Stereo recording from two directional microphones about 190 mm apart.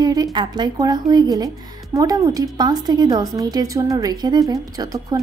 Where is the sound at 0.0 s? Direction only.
20° right (ahead or behind).